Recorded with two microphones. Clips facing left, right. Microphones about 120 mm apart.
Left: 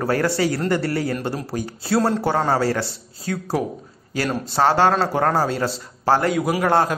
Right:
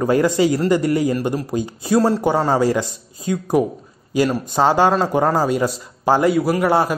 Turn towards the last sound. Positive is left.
turn(degrees=0)  # may be behind; listen again after turning